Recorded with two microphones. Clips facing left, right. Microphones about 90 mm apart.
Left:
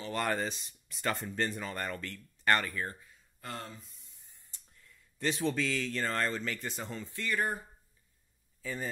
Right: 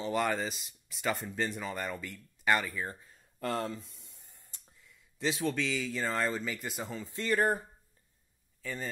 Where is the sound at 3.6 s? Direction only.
90° right; by 4.4 s 65° right (ahead or behind).